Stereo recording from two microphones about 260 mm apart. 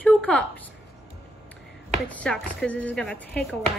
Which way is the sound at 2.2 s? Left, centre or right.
Centre.